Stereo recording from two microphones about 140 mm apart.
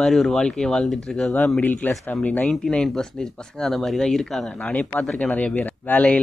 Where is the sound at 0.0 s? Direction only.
5° left (ahead or behind).